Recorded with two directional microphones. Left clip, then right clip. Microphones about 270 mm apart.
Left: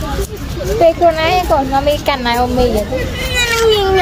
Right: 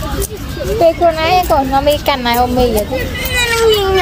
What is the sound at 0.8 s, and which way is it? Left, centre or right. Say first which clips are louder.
A child's voice: left 1 dB; centre.